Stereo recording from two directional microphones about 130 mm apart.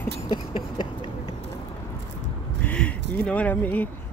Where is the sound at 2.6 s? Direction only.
10° left (ahead or behind).